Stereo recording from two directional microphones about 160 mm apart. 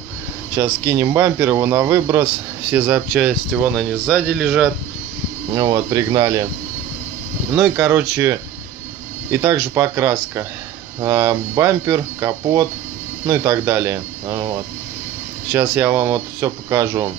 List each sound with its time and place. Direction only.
0.6 s a man's voice: 20° right (ahead or behind)
2.7 s speech: 10° right (ahead or behind)
5.5 s speech: 25° right (ahead or behind)
7.6 s a man's voice: 10° right (ahead or behind)